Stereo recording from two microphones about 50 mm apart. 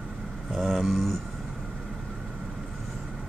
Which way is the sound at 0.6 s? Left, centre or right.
Centre.